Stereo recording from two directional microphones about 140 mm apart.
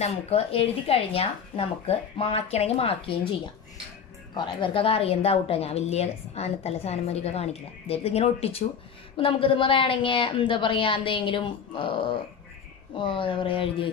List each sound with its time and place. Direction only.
0.0 s a woman's voice: 45° left (ahead or behind)